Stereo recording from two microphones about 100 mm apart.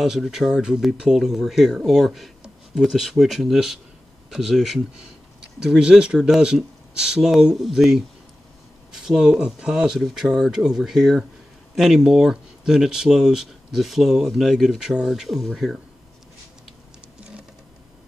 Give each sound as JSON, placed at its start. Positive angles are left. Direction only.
{"t": 0.0, "sound": "speech", "side_deg": -5}